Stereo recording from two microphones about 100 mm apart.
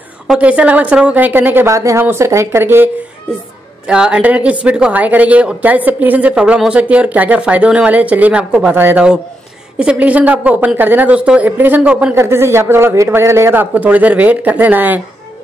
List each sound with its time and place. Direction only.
0.4 s a man's voice: 15° right (ahead or behind)
3.8 s speech: 10° right (ahead or behind)
12.2 s a man's voice: 25° right (ahead or behind)